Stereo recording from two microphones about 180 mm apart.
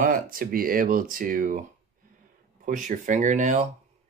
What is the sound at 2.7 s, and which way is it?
Speech, 45° right (ahead or behind).